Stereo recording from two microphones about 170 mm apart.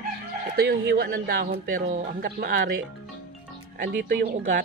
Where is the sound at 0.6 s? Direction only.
70° right (ahead or behind); by 2.2 s 50° right (ahead or behind).